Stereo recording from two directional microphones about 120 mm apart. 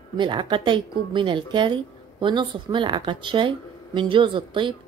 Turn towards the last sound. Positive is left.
turn(degrees=-40)  # may be behind; listen again after turning